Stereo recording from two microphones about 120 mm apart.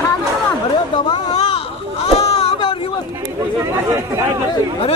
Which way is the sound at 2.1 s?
60° left (ahead or behind).